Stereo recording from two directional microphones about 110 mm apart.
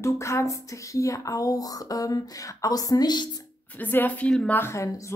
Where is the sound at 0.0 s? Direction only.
25° left (ahead or behind).